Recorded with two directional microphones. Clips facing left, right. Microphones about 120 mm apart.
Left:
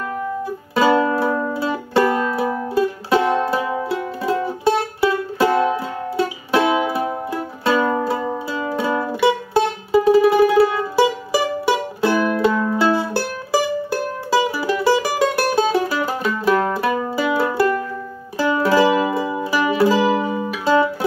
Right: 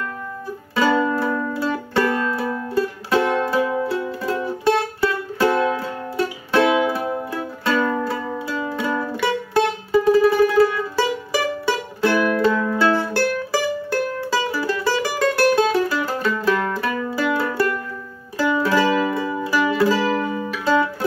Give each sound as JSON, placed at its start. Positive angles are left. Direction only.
{"t": 0.7, "sound": "music", "side_deg": 10}
{"t": 7.9, "sound": "music", "side_deg": 25}
{"t": 8.5, "sound": "music", "side_deg": 10}